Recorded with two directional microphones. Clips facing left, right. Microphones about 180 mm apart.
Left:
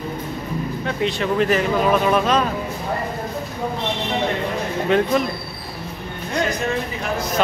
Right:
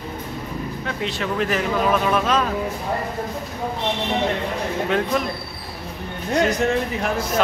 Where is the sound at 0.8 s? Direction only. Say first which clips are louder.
Left 5 dB; centre (ahead or behind).